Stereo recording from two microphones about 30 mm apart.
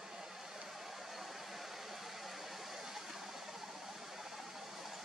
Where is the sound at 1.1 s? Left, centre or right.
Centre.